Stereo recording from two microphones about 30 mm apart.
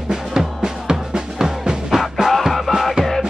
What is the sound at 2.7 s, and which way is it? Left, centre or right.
Music, centre.